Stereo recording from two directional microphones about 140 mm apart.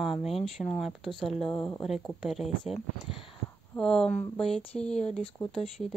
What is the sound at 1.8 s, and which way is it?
Speech, centre (ahead or behind).